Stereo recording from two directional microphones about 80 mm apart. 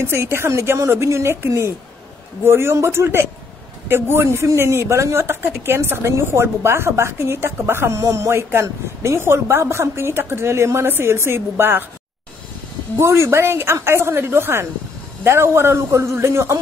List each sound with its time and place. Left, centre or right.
0.0 s speech: right
13.0 s speech: right